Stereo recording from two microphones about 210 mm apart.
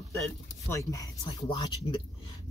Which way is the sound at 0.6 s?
15° left (ahead or behind).